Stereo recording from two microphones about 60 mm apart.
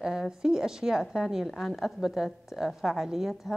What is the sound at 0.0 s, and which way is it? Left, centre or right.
A woman's voice, centre.